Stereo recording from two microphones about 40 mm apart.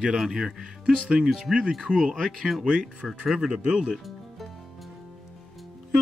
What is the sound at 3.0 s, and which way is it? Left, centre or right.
Speech, centre.